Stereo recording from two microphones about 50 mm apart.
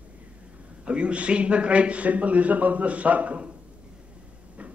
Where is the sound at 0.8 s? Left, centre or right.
Right.